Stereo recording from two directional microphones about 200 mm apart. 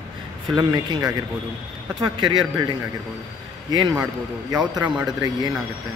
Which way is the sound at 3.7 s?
20° right (ahead or behind).